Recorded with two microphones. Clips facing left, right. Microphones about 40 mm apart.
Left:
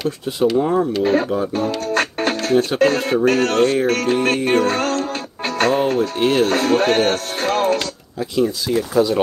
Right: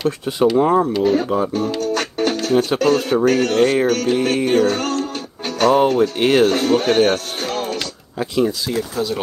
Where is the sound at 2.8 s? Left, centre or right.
Left.